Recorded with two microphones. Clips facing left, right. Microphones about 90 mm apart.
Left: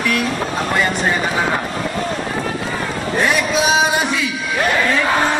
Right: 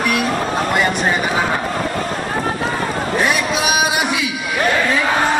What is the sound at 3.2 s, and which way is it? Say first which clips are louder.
Speech: left 3 dB; 20° right (ahead or behind).